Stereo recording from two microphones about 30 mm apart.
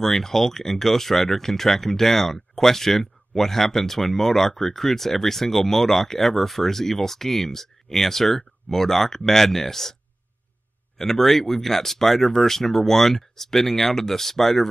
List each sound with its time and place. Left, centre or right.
0.0 s speech: centre
11.0 s speech: centre